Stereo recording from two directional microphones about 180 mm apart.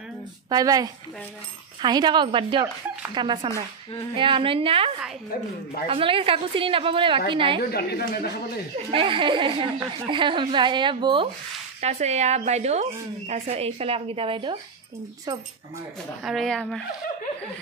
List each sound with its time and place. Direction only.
0.5 s a woman's voice: 20° right (ahead or behind)
7.7 s a woman's voice: 60° left (ahead or behind)
8.9 s a woman's voice: 30° right (ahead or behind)
11.8 s a woman's voice: 40° right (ahead or behind); by 15.4 s 20° right (ahead or behind)
16.2 s a woman's voice: centre (ahead or behind)